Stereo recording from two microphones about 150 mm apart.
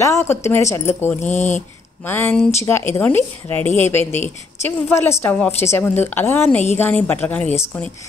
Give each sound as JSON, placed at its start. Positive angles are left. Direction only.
{"t": 0.0, "sound": "a woman's voice", "side_deg": 20}